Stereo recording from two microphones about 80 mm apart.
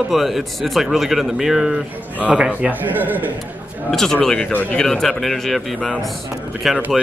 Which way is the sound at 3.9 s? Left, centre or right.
Centre.